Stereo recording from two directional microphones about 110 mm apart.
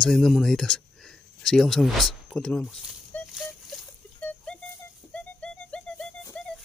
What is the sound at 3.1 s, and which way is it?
Rattle, 15° left (ahead or behind).